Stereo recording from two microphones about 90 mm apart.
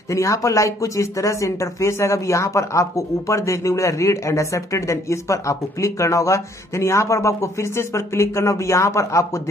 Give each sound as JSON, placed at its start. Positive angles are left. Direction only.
{"t": 0.1, "sound": "speech", "side_deg": 35}